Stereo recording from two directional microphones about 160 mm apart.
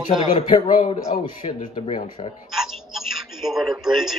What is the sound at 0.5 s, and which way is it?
Speech, 40° left (ahead or behind).